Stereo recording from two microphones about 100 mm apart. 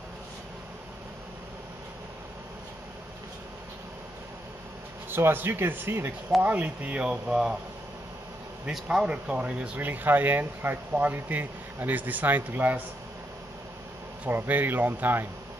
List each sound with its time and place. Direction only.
5.1 s speech: 20° right (ahead or behind)
8.6 s speech: 5° right (ahead or behind)
14.2 s speech: 20° right (ahead or behind)